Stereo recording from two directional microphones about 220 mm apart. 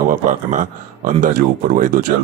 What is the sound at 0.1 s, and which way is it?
Speech, 35° right (ahead or behind).